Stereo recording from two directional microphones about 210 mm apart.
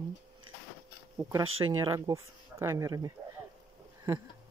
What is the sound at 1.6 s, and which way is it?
Speech, 20° right (ahead or behind).